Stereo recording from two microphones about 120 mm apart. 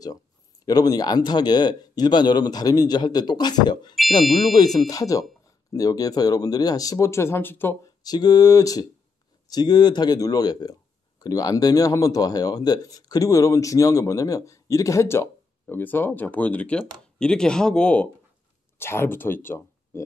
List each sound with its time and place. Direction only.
0.7 s speech: 35° left (ahead or behind)
4.2 s speech: centre (ahead or behind)
4.7 s speech: 30° left (ahead or behind)
8.0 s speech: 35° left (ahead or behind); by 18.0 s 10° left (ahead or behind)
18.8 s speech: 20° left (ahead or behind)